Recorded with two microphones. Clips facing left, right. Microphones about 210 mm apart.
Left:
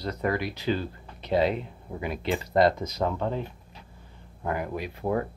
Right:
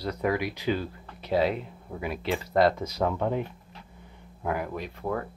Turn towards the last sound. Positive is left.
turn(degrees=25)  # may be behind; listen again after turning